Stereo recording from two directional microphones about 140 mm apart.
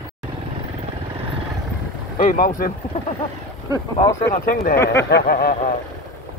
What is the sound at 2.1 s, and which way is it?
Speech, 75° left (ahead or behind).